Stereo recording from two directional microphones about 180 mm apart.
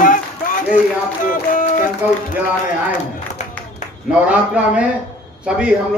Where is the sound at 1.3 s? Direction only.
50° left (ahead or behind).